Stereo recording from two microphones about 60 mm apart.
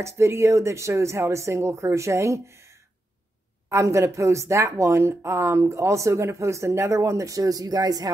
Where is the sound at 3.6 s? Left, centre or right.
Right.